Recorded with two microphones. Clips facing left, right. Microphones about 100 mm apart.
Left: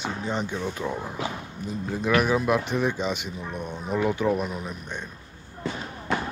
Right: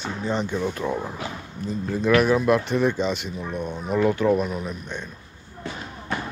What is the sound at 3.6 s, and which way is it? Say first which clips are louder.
Speech: right 4 dB; 15° right (ahead or behind).